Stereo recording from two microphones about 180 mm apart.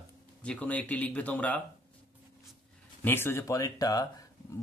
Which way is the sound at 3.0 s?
10° left (ahead or behind).